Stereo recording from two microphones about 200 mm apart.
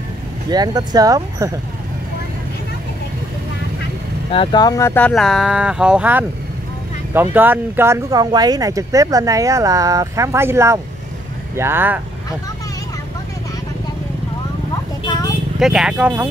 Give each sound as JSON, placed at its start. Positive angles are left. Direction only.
{"t": 0.5, "sound": "speech", "side_deg": -20}
{"t": 4.3, "sound": "speech", "side_deg": 25}
{"t": 15.0, "sound": "a sound", "side_deg": 20}
{"t": 15.6, "sound": "speech", "side_deg": -5}